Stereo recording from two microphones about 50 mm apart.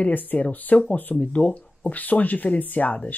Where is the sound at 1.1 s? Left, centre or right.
Left.